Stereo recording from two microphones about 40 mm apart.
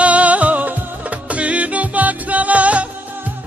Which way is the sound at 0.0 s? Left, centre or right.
Right.